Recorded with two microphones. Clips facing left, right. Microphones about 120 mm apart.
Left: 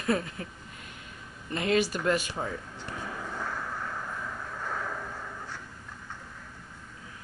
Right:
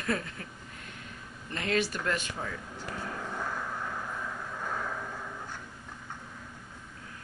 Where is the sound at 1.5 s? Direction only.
15° left (ahead or behind).